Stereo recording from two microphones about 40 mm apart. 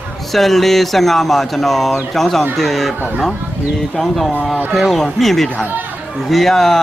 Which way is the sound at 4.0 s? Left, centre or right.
Centre.